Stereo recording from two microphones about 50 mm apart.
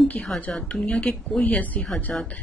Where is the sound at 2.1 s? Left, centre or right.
Left.